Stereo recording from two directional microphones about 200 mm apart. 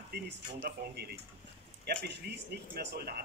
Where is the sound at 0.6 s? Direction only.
55° right (ahead or behind).